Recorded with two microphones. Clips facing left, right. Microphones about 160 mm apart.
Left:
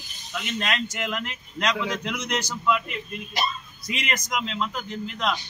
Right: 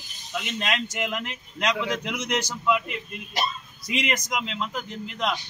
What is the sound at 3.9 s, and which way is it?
Speech, 15° right (ahead or behind).